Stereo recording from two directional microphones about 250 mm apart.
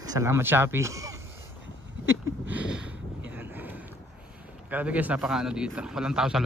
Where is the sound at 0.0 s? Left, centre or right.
Centre.